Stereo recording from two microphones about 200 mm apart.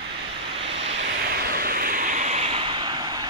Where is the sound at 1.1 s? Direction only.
50° right (ahead or behind); by 3.2 s 20° right (ahead or behind).